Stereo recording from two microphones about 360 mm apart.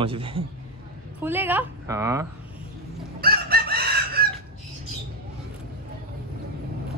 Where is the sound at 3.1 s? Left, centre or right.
Right.